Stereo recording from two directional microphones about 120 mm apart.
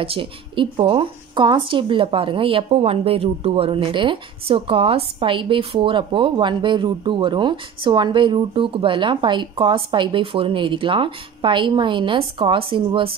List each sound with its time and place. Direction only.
0.0 s speech: 50° right (ahead or behind)